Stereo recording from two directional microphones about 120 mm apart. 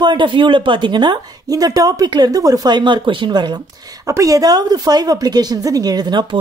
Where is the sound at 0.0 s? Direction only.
40° right (ahead or behind).